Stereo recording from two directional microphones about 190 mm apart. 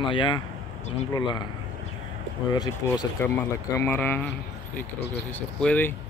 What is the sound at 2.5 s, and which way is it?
Speech, 20° left (ahead or behind).